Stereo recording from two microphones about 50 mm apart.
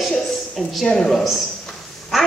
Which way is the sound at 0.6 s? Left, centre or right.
Centre.